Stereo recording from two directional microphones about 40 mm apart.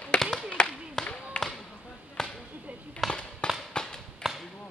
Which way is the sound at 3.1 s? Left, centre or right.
Left.